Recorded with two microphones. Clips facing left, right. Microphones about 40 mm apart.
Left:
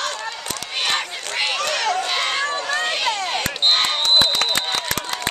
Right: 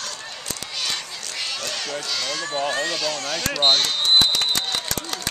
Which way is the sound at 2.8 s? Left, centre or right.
Left.